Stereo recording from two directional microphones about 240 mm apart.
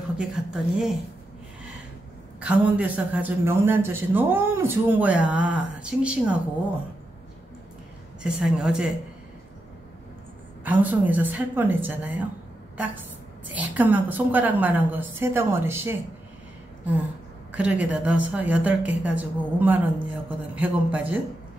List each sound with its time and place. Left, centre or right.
0.2 s a woman's voice: centre
2.4 s speech: centre
8.2 s a woman's voice: centre
10.6 s a woman's voice: centre
17.5 s a woman's voice: centre